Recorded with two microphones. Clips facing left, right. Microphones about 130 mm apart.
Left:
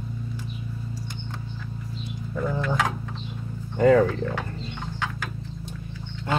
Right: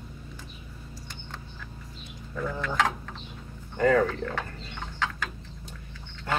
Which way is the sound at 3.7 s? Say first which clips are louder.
Left 5 dB; 20° left (ahead or behind).